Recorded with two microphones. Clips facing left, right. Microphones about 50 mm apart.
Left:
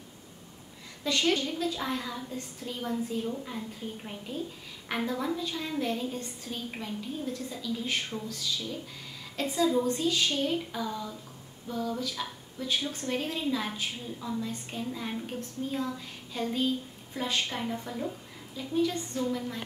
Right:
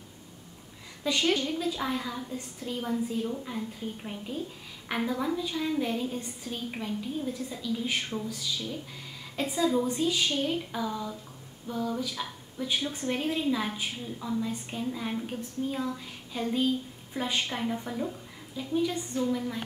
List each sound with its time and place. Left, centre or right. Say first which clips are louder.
1.0 s a woman's voice: right 1 dB; centre